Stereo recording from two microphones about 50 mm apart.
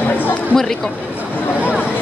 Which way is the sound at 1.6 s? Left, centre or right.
Right.